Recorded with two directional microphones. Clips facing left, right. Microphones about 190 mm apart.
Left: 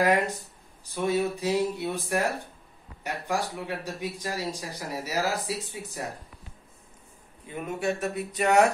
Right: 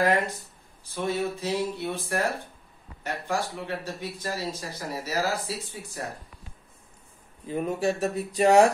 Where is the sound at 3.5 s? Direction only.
10° left (ahead or behind).